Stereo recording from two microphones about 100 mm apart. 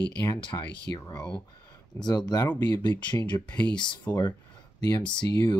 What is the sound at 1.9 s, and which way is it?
Speech, 25° left (ahead or behind).